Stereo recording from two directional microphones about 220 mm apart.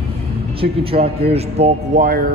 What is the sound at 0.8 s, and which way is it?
Speech, 25° right (ahead or behind).